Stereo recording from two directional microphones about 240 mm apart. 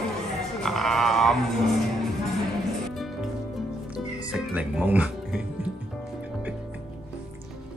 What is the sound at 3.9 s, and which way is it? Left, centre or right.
Music, centre.